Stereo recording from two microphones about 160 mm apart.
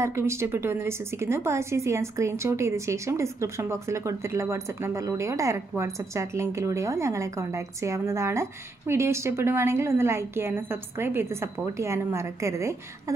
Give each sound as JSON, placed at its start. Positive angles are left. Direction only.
{"t": 0.0, "sound": "a woman's voice", "side_deg": -15}